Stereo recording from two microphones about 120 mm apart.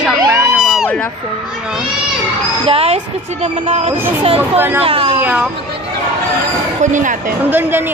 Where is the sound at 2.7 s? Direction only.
55° right (ahead or behind).